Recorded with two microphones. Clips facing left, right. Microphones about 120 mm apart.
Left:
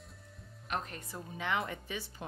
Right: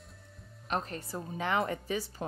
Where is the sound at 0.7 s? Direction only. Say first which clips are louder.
Right 4 dB; 35° right (ahead or behind).